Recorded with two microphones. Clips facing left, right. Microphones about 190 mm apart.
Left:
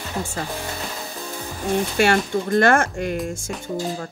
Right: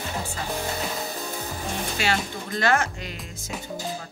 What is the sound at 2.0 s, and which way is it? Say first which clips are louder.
Speech: left 8 dB; 50° left (ahead or behind).